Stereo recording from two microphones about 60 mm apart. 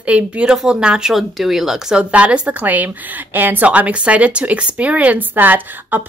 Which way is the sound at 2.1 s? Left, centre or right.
Right.